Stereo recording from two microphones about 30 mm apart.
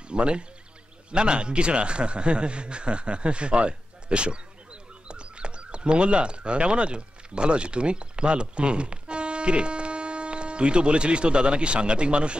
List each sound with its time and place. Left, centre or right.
0.1 s a man's voice: right